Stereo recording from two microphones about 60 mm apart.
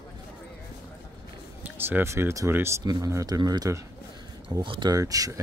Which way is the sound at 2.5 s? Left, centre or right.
Right.